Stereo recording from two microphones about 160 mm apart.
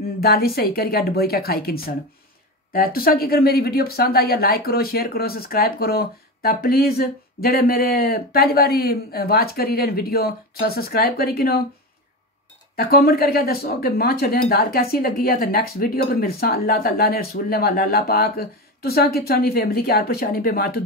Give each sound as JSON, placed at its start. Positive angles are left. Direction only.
{"t": 0.2, "sound": "speech", "side_deg": 75}
{"t": 12.7, "sound": "speech", "side_deg": 75}